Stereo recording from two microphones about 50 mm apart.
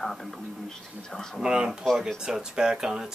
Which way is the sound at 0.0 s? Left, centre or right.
Centre.